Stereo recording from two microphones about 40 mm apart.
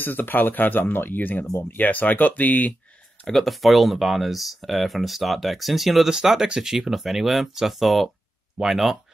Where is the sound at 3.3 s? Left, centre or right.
Centre.